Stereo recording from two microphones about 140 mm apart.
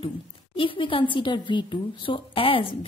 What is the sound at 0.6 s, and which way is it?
A woman's voice, 40° left (ahead or behind).